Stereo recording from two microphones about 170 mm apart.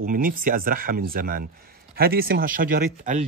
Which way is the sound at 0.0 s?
55° right (ahead or behind).